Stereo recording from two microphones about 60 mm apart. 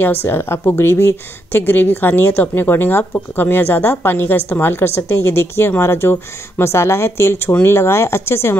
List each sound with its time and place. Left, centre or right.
0.0 s a woman's voice: left
1.5 s a woman's voice: left